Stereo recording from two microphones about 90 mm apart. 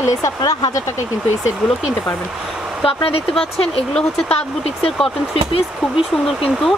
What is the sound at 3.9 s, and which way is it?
Speech, 10° left (ahead or behind).